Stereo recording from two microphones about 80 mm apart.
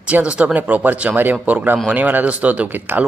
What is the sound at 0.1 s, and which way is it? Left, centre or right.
Speech, centre.